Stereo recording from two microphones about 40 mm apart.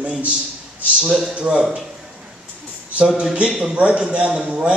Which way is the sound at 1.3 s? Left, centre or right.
Right.